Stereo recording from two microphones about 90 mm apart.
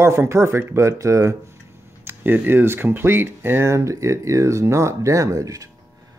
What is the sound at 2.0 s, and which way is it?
Speech, 25° right (ahead or behind).